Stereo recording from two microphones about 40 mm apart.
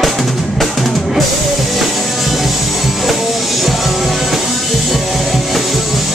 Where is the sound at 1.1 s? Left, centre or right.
Centre.